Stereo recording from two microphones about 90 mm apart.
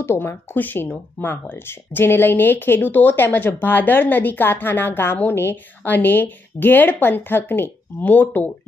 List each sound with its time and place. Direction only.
0.0 s a woman's voice: 30° left (ahead or behind)